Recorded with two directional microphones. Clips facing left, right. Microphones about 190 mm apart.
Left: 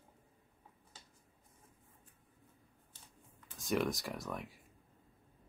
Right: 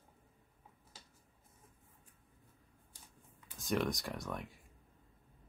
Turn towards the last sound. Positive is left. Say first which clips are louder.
# even
turn(degrees=0)  # may be behind; listen again after turning